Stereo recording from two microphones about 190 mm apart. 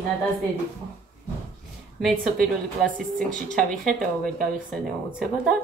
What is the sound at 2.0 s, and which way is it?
A woman's voice, centre (ahead or behind).